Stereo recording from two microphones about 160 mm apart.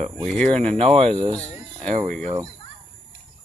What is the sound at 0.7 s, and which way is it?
Speech, 40° right (ahead or behind).